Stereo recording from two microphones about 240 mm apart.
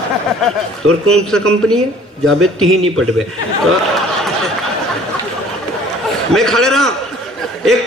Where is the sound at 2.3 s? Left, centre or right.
Right.